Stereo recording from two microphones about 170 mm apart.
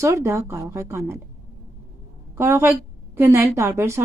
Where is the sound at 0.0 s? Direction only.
15° right (ahead or behind).